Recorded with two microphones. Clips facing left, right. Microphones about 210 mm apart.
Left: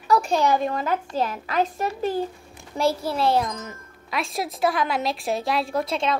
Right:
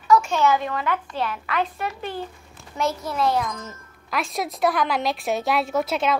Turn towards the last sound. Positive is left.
turn(degrees=-5)  # may be behind; listen again after turning